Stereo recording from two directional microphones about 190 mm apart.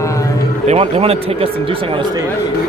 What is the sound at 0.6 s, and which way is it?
Speech, 30° right (ahead or behind).